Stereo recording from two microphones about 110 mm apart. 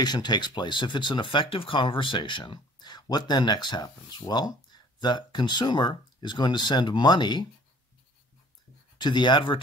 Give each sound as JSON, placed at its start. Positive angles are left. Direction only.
{"t": 0.0, "sound": "speech", "side_deg": 40}
{"t": 8.9, "sound": "speech", "side_deg": 45}